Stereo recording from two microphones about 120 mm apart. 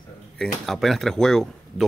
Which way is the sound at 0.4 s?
Centre (ahead or behind).